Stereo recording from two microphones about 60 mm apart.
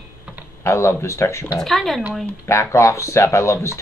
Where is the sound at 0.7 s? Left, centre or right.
Left.